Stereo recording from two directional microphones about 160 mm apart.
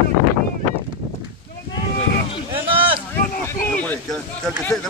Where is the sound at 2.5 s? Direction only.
35° right (ahead or behind).